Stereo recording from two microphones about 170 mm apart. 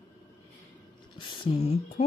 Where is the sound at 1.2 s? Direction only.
35° left (ahead or behind).